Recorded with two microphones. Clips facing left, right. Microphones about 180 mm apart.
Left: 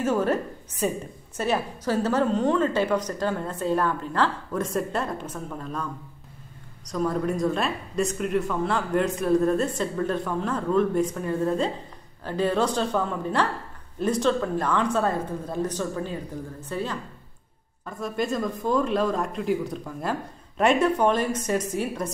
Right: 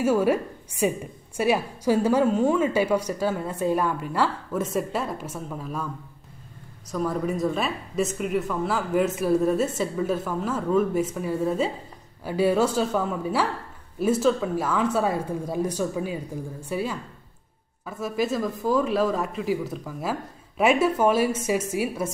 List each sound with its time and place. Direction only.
0.0 s a woman's voice: 10° right (ahead or behind)
6.9 s a woman's voice: 5° right (ahead or behind)